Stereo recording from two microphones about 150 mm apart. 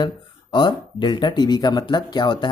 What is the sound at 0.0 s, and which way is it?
Speech, 30° left (ahead or behind).